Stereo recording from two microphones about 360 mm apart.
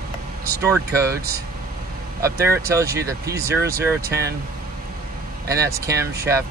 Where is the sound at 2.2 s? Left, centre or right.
Centre.